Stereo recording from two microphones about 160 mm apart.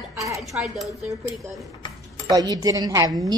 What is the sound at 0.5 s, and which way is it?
Speech, 10° right (ahead or behind).